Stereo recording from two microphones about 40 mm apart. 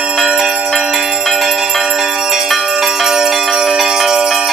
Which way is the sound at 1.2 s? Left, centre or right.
Centre.